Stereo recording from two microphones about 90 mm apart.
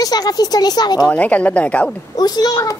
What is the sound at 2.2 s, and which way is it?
Speech, 50° left (ahead or behind).